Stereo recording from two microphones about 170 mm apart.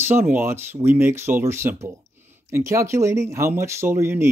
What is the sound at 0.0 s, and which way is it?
Speech, 10° right (ahead or behind).